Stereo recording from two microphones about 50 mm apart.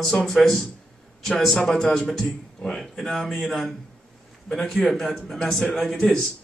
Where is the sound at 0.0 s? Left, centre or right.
Centre.